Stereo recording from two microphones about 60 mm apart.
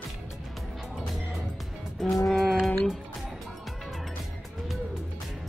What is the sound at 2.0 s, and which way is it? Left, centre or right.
Music, centre.